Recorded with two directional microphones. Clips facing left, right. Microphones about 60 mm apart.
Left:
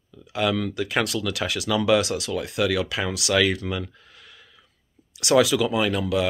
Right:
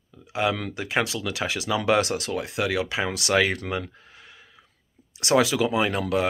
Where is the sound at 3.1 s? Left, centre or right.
Right.